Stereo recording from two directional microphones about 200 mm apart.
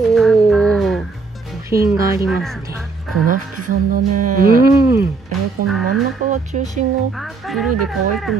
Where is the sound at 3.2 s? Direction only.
40° right (ahead or behind).